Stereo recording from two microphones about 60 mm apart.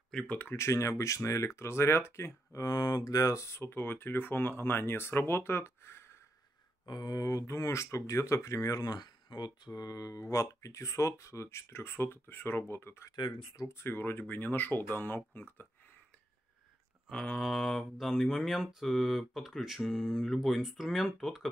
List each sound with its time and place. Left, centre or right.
0.6 s speech: left
2.6 s speech: left
7.1 s speech: left
17.1 s speech: centre